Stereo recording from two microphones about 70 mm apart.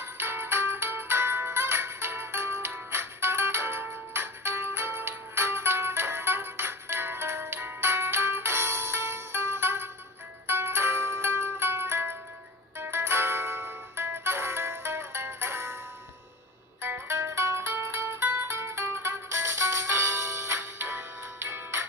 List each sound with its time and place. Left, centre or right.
0.0 s music: right
16.8 s music: right